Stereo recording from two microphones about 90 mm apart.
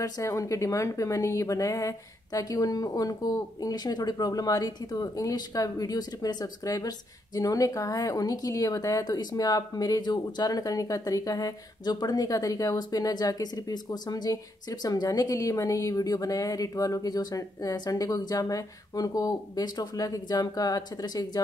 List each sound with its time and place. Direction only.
0.0 s a woman's voice: 35° left (ahead or behind)